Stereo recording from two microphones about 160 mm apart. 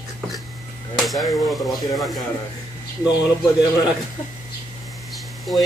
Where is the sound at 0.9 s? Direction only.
Centre (ahead or behind).